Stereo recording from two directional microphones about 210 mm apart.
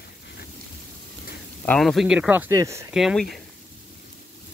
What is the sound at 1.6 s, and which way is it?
Speech, 5° left (ahead or behind).